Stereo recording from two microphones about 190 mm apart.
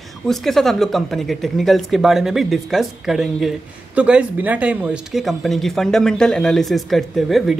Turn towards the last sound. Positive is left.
turn(degrees=0)  # may be behind; listen again after turning